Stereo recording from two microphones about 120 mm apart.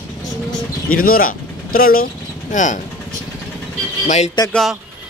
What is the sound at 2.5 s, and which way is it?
Speech, 90° left.